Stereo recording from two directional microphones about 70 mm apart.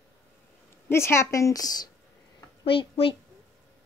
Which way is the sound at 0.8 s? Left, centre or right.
Left.